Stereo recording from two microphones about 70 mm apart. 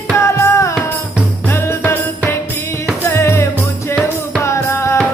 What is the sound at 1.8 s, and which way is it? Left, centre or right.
Music, left.